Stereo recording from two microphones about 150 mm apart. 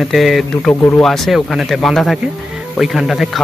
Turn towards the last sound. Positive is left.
turn(degrees=0)  # may be behind; listen again after turning